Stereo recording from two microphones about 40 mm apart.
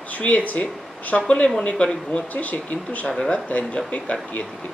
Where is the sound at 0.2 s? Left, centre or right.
Left.